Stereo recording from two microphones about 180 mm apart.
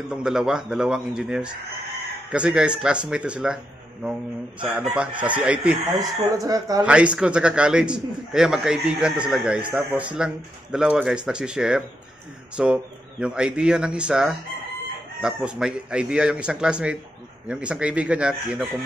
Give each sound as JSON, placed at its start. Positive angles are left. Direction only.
{"t": 0.1, "sound": "a man's voice", "side_deg": -5}
{"t": 4.6, "sound": "speech", "side_deg": -5}
{"t": 5.9, "sound": "speech", "side_deg": -20}
{"t": 6.8, "sound": "a man's voice", "side_deg": -5}